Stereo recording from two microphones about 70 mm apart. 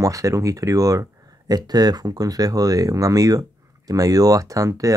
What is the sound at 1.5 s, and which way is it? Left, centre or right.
Speech, right.